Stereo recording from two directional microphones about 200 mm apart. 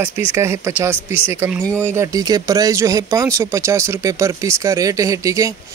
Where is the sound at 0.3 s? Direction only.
15° right (ahead or behind).